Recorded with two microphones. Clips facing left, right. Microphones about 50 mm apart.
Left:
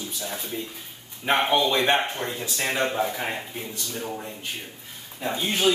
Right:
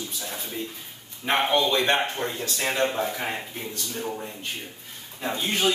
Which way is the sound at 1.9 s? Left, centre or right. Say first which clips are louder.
Even; centre.